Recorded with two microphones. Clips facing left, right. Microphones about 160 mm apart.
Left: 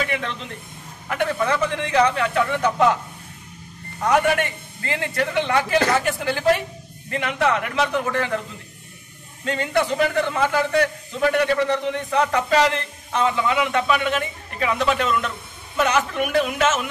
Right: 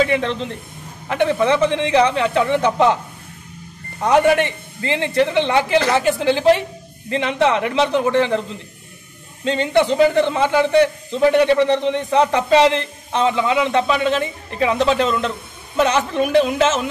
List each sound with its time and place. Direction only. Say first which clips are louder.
0.0 s a man's voice: right 8 dB; 30° right (ahead or behind)
4.0 s a man's voice: right 5 dB; 25° right (ahead or behind)
9.4 s a man's voice: right 5 dB; 25° right (ahead or behind)